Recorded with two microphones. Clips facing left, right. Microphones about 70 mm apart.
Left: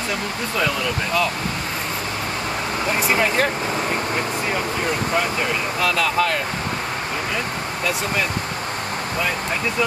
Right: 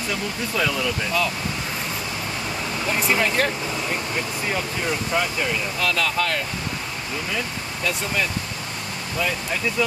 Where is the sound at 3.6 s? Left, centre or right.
Left.